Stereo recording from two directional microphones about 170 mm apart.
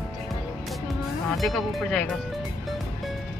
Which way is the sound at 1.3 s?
Centre (ahead or behind).